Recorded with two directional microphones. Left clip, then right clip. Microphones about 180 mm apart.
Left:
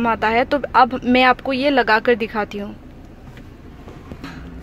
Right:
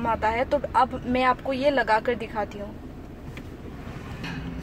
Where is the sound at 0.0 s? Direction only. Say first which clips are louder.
Left 7 dB; 50° left (ahead or behind).